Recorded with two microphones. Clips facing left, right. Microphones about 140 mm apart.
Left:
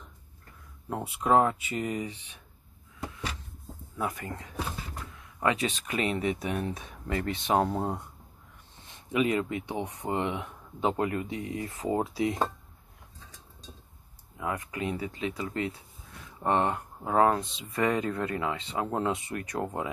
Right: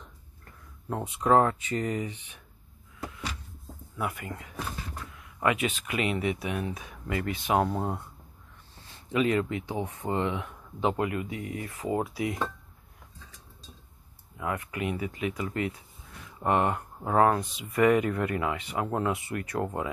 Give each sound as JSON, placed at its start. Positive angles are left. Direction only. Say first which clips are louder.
{"t": 0.8, "sound": "speech", "louder": "right 2 dB", "side_deg": 15}
{"t": 4.0, "sound": "speech", "louder": "even", "side_deg": 30}
{"t": 7.7, "sound": "speech", "louder": "even", "side_deg": 15}
{"t": 8.8, "sound": "a sound", "louder": "right 1 dB", "side_deg": 20}
{"t": 9.7, "sound": "speech", "louder": "right 1 dB", "side_deg": 20}
{"t": 14.4, "sound": "speech", "louder": "right 1 dB", "side_deg": 30}